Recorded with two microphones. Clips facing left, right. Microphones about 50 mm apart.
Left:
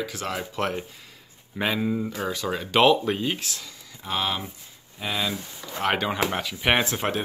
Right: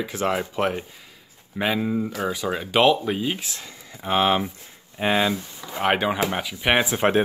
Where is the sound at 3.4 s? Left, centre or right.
Right.